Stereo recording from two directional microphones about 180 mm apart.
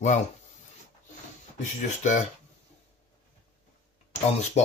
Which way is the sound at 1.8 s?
45° left (ahead or behind).